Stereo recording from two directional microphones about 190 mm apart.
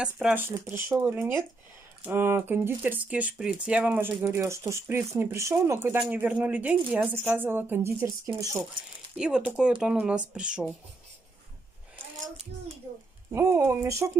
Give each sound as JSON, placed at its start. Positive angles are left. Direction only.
{"t": 0.0, "sound": "speech", "side_deg": -5}
{"t": 9.1, "sound": "speech", "side_deg": -5}
{"t": 13.3, "sound": "speech", "side_deg": -15}